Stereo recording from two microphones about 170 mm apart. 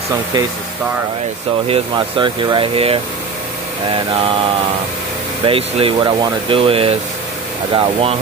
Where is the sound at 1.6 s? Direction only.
30° right (ahead or behind).